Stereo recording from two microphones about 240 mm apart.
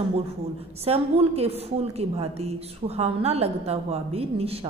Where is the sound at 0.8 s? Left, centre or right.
Right.